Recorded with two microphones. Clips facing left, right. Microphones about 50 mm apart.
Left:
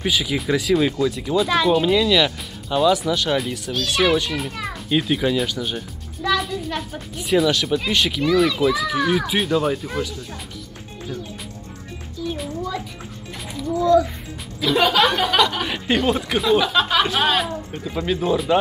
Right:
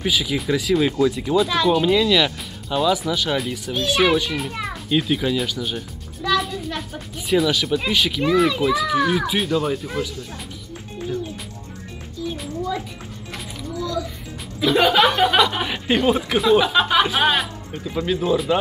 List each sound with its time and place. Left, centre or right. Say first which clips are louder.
0.0 s a child's voice: even; centre
3.7 s a child's voice: right 1 dB; centre
12.3 s music: even; centre
13.7 s music: left 10 dB; left
14.6 s speech: right 1 dB; centre
17.8 s a child's voice: right 1 dB; centre